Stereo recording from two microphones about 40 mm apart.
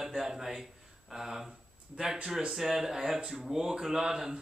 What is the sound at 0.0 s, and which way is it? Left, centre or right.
A man's voice, centre.